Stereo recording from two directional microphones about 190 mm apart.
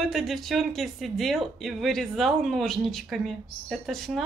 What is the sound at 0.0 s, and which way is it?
Speech, centre (ahead or behind).